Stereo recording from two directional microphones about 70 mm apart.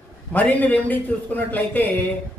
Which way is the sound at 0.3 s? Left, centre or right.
Left.